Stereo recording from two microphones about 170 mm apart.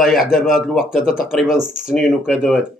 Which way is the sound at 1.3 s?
5° right (ahead or behind).